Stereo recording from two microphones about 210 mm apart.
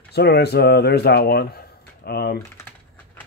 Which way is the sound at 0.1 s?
50° left (ahead or behind).